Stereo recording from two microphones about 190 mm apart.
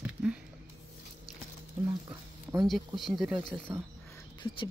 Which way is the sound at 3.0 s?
Centre (ahead or behind).